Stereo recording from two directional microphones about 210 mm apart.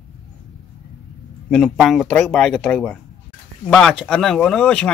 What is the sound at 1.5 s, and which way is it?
Speech, centre (ahead or behind).